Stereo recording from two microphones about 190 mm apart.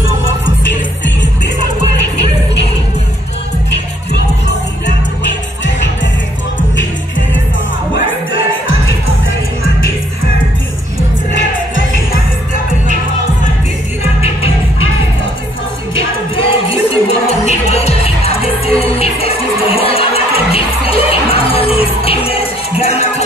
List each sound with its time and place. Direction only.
4.1 s music: 60° left (ahead or behind)
16.3 s music: 30° left (ahead or behind)